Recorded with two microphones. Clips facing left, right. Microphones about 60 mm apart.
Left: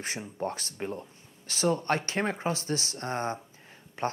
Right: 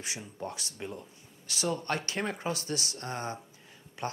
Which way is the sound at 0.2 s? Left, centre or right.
Left.